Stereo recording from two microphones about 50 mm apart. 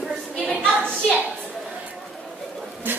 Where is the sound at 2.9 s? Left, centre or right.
Right.